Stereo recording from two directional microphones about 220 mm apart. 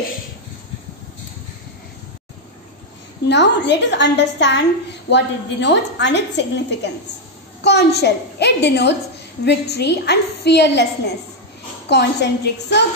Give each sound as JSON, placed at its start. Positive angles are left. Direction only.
{"t": 3.3, "sound": "a woman's voice", "side_deg": 50}
{"t": 11.9, "sound": "a woman's voice", "side_deg": 50}